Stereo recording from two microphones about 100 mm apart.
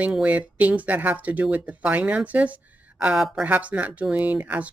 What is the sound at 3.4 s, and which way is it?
Speech, 15° right (ahead or behind).